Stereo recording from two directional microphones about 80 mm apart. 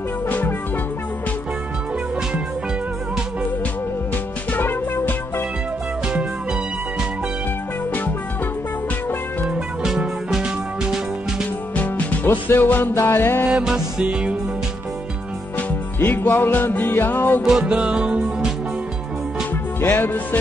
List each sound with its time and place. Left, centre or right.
0.3 s music: left
4.5 s music: left
9.5 s music: centre
11.7 s music: centre
13.5 s music: centre
16.0 s music: left
17.6 s music: centre
19.8 s music: left